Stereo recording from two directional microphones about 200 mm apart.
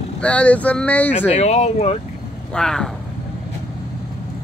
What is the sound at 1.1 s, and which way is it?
Speech, 30° left (ahead or behind).